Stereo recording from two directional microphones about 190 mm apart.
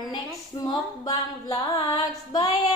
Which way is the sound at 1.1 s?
20° left (ahead or behind).